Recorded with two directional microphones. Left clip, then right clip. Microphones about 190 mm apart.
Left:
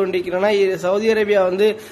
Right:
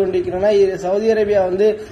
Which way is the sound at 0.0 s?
25° left (ahead or behind).